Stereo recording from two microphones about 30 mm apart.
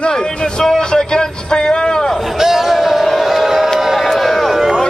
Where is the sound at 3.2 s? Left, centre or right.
Centre.